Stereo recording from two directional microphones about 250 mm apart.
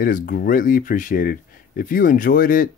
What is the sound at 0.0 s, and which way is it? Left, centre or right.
Speech, left.